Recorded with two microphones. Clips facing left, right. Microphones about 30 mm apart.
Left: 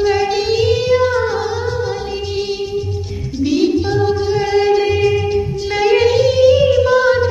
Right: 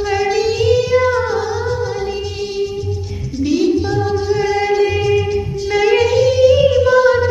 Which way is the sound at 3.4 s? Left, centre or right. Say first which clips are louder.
Even; centre.